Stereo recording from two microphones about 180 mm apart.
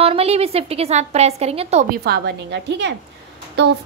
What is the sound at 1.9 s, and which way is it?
A woman's voice, 60° right (ahead or behind).